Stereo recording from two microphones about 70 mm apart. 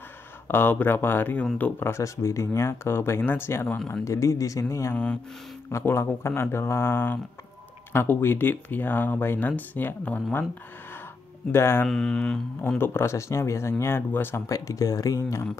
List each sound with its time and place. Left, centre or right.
0.5 s speech: left
1.9 s speech: left
4.0 s speech: left
4.9 s speech: centre
5.7 s speech: left
11.5 s speech: left
11.8 s speech: centre
12.7 s speech: left
14.5 s speech: left